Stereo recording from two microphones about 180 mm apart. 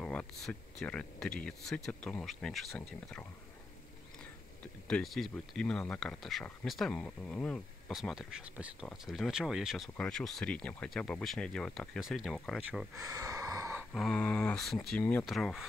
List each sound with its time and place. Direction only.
0.0 s speech: 5° left (ahead or behind)
4.8 s speech: 5° left (ahead or behind)
12.9 s a sound: 20° right (ahead or behind)
13.9 s speech: 5° left (ahead or behind)